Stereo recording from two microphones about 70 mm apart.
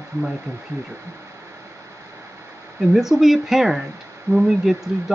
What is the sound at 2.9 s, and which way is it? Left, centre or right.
Speech, centre.